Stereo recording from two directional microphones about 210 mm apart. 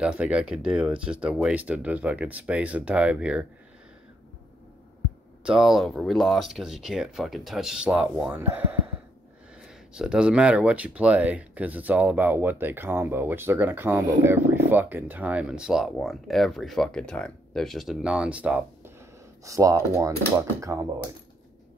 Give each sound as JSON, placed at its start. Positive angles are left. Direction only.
{"t": 0.0, "sound": "speech", "side_deg": -5}
{"t": 5.4, "sound": "speech", "side_deg": 0}